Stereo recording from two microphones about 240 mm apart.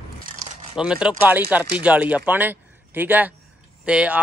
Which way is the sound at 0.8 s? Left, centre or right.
Centre.